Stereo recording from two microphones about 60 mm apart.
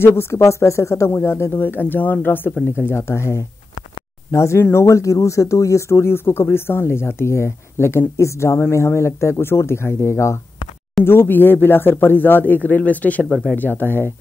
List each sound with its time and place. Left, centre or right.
0.0 s speech: left
1.1 s speech: left
2.8 s speech: left
11.1 s speech: left